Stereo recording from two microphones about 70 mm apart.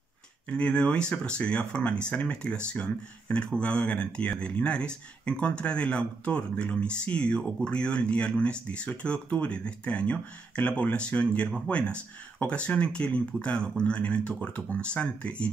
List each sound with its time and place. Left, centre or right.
0.5 s speech: centre